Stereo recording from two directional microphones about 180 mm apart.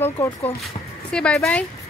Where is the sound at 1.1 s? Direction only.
5° left (ahead or behind).